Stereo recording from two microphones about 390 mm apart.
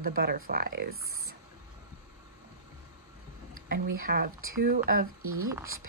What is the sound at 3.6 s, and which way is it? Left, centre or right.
Speech, right.